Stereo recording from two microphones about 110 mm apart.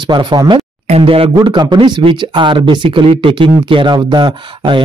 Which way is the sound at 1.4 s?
45° right (ahead or behind).